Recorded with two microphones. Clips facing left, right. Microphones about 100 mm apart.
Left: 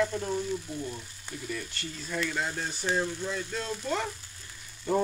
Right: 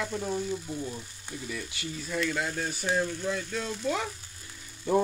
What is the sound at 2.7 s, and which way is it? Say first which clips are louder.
Speech: right 1 dB; 10° right (ahead or behind).